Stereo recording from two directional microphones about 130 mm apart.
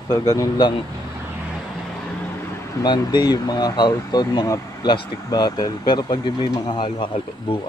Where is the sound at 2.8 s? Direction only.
30° left (ahead or behind).